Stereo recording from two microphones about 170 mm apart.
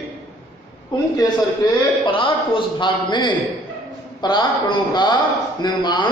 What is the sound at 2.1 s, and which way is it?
A man's voice, 30° left (ahead or behind).